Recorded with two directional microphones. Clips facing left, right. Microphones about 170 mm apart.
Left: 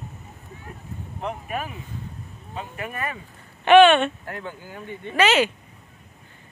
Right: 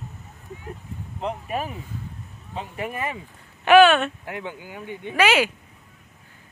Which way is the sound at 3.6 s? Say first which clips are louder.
Left 1 dB; 5° right (ahead or behind).